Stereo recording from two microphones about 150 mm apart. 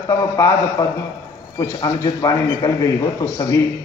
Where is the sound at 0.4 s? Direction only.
25° left (ahead or behind).